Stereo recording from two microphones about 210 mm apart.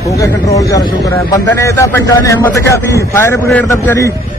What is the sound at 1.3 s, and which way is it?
Speech, 15° left (ahead or behind).